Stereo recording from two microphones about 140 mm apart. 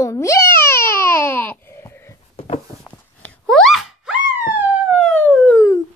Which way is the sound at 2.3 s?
50° left (ahead or behind).